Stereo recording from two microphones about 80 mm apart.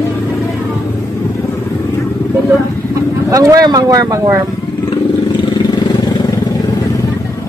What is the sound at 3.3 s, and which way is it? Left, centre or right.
Speech, right.